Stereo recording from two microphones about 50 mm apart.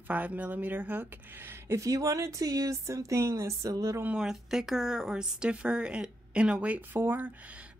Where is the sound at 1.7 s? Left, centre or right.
Right.